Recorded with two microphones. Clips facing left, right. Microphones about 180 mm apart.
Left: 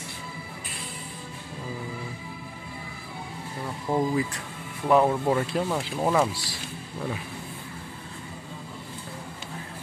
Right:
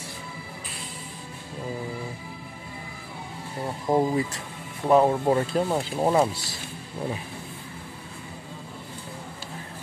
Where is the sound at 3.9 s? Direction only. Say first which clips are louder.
Right 4 dB; 40° right (ahead or behind).